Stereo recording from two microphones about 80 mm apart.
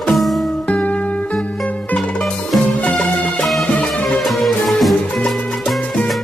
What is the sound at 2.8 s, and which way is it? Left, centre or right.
Music, centre.